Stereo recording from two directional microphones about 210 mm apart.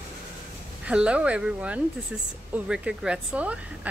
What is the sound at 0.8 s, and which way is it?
A woman's voice, 5° right (ahead or behind).